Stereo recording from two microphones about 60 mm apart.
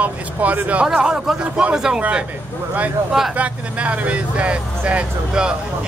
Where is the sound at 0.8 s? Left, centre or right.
Centre.